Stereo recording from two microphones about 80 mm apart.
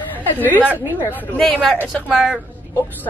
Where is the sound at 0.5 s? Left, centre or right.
Right.